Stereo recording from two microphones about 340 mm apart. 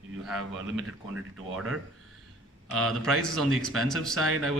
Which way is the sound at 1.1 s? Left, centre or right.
Centre.